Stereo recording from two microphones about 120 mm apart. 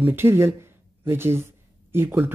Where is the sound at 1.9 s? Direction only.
20° right (ahead or behind).